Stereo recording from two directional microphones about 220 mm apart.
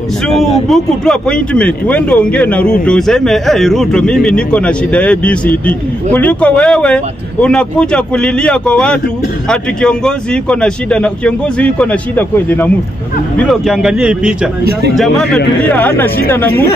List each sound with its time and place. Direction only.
0.4 s speech: centre (ahead or behind)
14.6 s speech: 45° right (ahead or behind)
15.0 s speech: centre (ahead or behind)